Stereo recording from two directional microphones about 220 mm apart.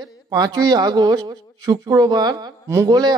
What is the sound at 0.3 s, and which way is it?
Speech, 20° right (ahead or behind).